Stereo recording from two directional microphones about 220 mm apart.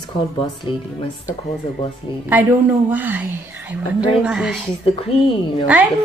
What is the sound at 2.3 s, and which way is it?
Speech, 10° right (ahead or behind).